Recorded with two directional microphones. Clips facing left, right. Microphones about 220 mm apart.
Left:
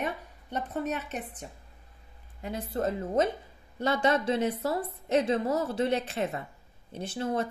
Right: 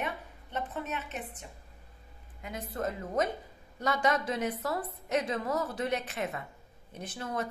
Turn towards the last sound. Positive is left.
turn(degrees=30)  # may be behind; listen again after turning